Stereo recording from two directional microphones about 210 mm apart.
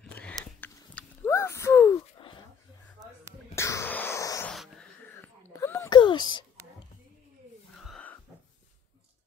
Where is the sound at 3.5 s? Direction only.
15° left (ahead or behind).